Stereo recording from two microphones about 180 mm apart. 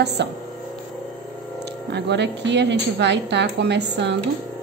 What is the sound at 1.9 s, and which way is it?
A woman's voice, 70° right (ahead or behind).